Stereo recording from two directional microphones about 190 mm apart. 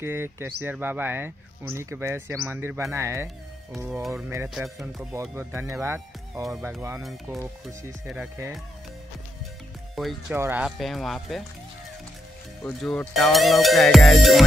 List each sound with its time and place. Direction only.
0.0 s speech: 10° right (ahead or behind)
4.3 s speech: 15° right (ahead or behind)
4.6 s speech: centre (ahead or behind)
5.3 s speech: 15° right (ahead or behind)
7.6 s speech: 5° right (ahead or behind)
10.0 s speech: centre (ahead or behind)
10.3 s speech: 10° right (ahead or behind)
12.6 s speech: 5° left (ahead or behind)